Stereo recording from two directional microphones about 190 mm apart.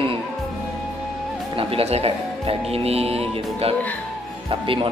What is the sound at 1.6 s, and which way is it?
Speech, 30° right (ahead or behind).